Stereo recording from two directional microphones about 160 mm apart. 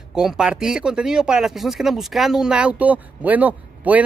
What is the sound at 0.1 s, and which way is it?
Speech, 5° right (ahead or behind).